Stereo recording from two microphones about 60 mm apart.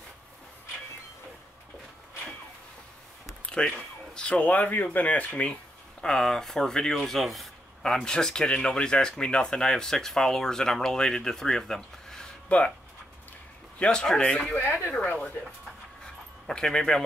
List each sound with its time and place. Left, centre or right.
3.4 s speech: centre
12.4 s speech: left
13.7 s speech: centre
14.2 s speech: left
16.0 s dog: centre